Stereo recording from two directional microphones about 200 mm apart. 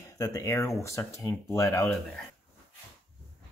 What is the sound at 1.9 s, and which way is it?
Speech, centre (ahead or behind).